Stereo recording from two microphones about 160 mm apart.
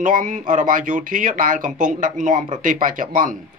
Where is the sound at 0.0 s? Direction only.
55° right (ahead or behind).